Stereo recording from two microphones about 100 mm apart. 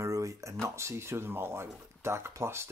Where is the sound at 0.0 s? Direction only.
30° right (ahead or behind).